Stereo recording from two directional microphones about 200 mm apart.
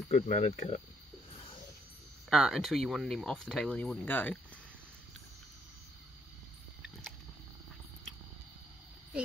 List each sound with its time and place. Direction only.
0.1 s speech: 35° left (ahead or behind)
2.2 s speech: centre (ahead or behind)
6.8 s a sound: 5° left (ahead or behind)